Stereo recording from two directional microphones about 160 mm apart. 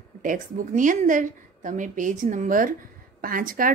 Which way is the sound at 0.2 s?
55° right (ahead or behind).